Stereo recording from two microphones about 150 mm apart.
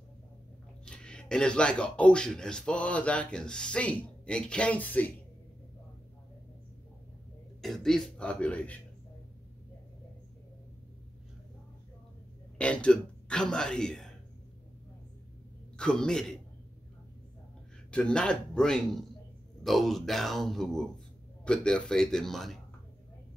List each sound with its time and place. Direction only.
0.8 s speech: 5° left (ahead or behind)
7.6 s speech: centre (ahead or behind)
12.5 s speech: 10° left (ahead or behind)
15.7 s a man's voice: 5° left (ahead or behind)
17.9 s a man's voice: 5° left (ahead or behind)